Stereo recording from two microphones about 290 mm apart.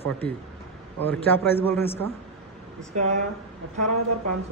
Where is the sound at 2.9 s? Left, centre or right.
Right.